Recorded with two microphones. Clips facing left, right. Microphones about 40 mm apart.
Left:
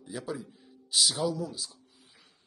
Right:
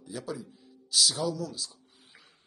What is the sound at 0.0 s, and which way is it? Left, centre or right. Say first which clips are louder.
Speech: left 1 dB; centre.